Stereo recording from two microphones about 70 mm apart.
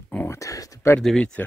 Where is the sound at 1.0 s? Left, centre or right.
Centre.